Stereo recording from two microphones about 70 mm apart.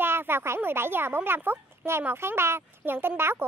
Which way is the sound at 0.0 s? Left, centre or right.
Right.